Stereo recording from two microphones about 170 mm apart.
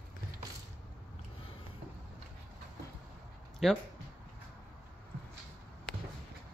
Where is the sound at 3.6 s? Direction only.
Centre (ahead or behind).